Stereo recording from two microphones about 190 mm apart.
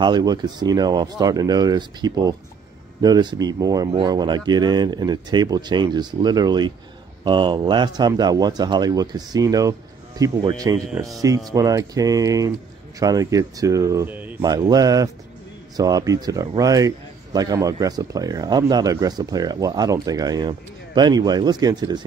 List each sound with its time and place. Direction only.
0.0 s a man's voice: 20° right (ahead or behind)
14.4 s a man's voice: 20° right (ahead or behind)